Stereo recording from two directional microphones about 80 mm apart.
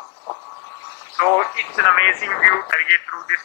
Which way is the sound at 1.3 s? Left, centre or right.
Left.